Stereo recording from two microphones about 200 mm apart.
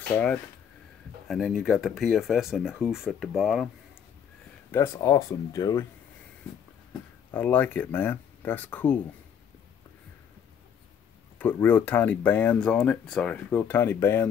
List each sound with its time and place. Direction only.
1.2 s speech: centre (ahead or behind)
4.6 s speech: 15° left (ahead or behind)
7.3 s speech: 10° left (ahead or behind)
11.3 s speech: 10° left (ahead or behind)